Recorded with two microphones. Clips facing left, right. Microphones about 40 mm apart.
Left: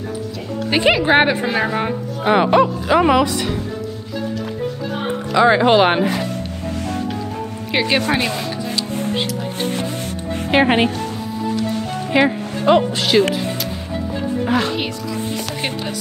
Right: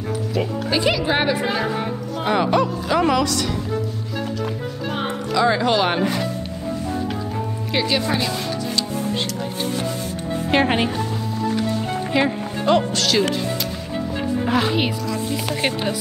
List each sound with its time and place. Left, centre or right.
0.7 s speech: left
5.3 s speech: left
7.7 s speech: left
8.4 s music: centre
10.5 s speech: centre
12.3 s speech: centre
14.4 s speech: centre